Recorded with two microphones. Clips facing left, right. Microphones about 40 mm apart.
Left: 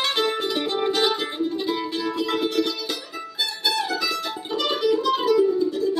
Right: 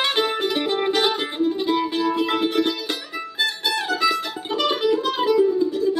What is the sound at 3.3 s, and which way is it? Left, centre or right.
Music, right.